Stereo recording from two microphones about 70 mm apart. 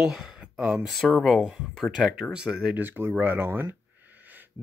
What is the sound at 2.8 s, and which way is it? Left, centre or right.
Speech, right.